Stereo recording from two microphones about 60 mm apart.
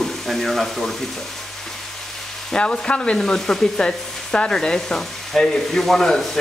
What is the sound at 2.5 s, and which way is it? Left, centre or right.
Sizzle, centre.